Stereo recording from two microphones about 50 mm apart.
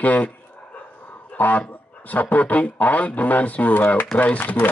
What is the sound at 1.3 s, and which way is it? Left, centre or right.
A man's voice, left.